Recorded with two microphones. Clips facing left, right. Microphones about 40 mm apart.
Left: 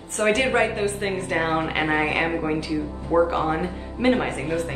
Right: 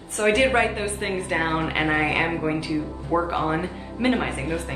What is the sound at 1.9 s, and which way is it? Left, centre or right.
Speech, right.